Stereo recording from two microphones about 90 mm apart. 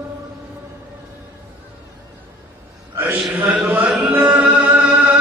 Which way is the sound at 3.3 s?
15° right (ahead or behind).